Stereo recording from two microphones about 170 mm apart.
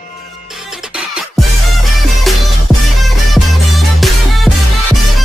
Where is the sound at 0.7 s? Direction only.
5° right (ahead or behind).